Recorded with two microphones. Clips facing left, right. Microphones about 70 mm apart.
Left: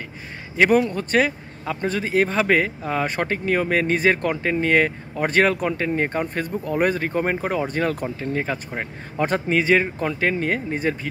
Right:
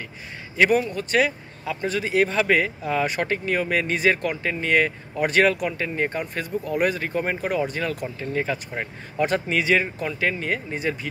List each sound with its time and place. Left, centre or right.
0.6 s speech: left